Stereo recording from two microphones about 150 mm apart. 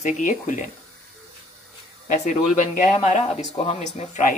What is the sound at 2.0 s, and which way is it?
Speech, 55° left (ahead or behind).